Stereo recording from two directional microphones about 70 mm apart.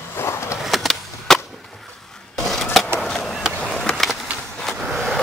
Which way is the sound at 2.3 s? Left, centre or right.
Centre.